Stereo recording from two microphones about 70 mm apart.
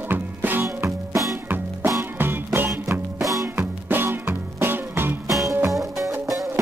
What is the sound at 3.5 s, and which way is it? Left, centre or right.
Music, right.